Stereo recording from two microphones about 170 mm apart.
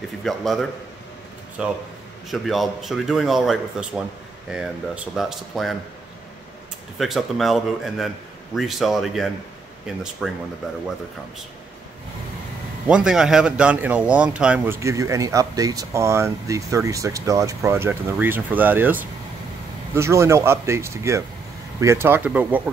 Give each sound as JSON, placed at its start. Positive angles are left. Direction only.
{"t": 0.2, "sound": "speech", "side_deg": 0}
{"t": 7.0, "sound": "speech", "side_deg": 0}
{"t": 12.8, "sound": "speech", "side_deg": -5}
{"t": 14.8, "sound": "speech", "side_deg": -20}